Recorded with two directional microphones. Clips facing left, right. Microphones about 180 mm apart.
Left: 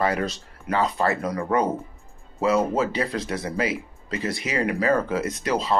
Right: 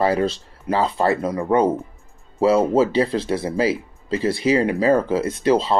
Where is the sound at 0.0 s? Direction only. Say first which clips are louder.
Right 5 dB; 30° right (ahead or behind).